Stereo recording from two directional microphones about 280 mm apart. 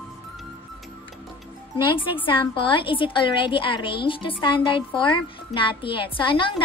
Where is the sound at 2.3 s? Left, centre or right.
Centre.